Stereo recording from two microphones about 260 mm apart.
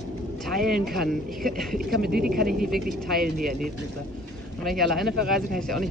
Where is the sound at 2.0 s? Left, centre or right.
Right.